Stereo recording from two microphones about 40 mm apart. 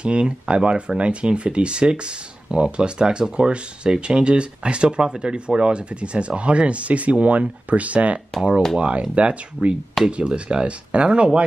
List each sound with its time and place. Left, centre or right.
0.0 s speech: right